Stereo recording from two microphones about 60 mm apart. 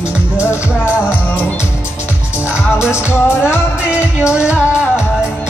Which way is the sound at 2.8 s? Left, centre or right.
Left.